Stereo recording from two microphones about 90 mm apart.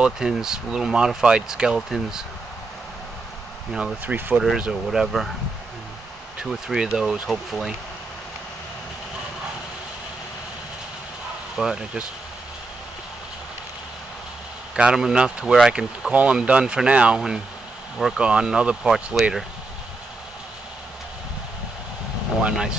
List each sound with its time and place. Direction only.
0.0 s speech: 5° right (ahead or behind)
4.0 s speech: 20° right (ahead or behind)
4.4 s speech: 5° right (ahead or behind)
6.4 s speech: 10° right (ahead or behind)
11.5 s speech: 5° right (ahead or behind)
14.8 s speech: 5° right (ahead or behind)
22.4 s speech: 10° right (ahead or behind)